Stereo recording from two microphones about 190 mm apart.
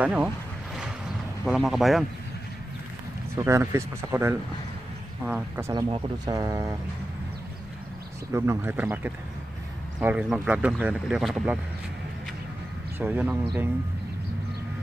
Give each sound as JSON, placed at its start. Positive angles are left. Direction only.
{"t": 0.0, "sound": "speech", "side_deg": -5}
{"t": 1.4, "sound": "speech", "side_deg": 0}
{"t": 3.3, "sound": "speech", "side_deg": -15}
{"t": 5.7, "sound": "speech", "side_deg": -25}
{"t": 8.3, "sound": "speech", "side_deg": -15}
{"t": 13.0, "sound": "speech", "side_deg": -10}